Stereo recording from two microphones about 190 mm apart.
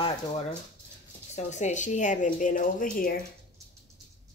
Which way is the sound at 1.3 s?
40° left (ahead or behind).